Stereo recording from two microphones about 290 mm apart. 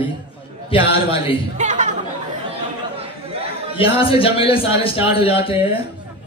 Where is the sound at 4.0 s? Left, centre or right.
Centre.